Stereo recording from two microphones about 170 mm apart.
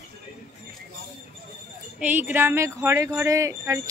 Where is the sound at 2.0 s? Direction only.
10° right (ahead or behind).